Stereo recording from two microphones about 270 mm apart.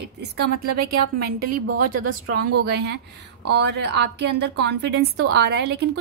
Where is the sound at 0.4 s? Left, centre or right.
Right.